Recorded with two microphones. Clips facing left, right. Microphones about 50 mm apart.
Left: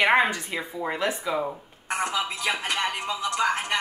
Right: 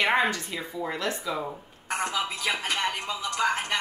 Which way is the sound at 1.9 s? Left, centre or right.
Centre.